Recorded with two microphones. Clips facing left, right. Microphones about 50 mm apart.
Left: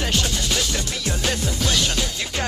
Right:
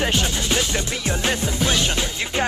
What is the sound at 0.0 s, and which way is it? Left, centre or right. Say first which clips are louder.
Music: right 2 dB; right.